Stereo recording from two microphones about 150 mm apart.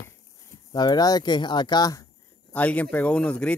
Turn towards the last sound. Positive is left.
turn(degrees=5)  # may be behind; listen again after turning